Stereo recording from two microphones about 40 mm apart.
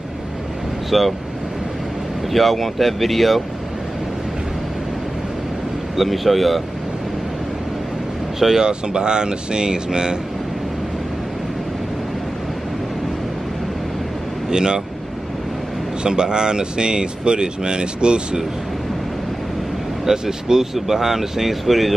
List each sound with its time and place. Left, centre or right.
0.8 s speech: centre
2.2 s speech: centre
5.9 s speech: centre
8.4 s speech: centre
8.6 s speech: right
14.5 s speech: centre
16.0 s speech: right
20.1 s speech: centre